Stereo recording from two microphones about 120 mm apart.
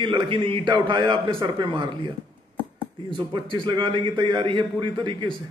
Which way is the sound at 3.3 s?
40° right (ahead or behind).